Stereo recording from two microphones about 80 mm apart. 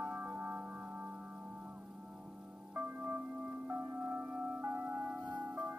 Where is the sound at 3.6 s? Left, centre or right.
Right.